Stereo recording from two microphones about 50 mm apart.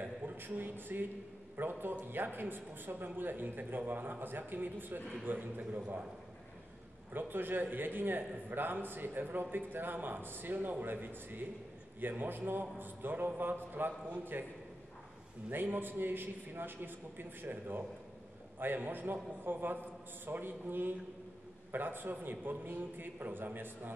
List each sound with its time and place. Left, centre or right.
0.0 s a man's voice: right
7.2 s a man's voice: right
15.5 s a man's voice: right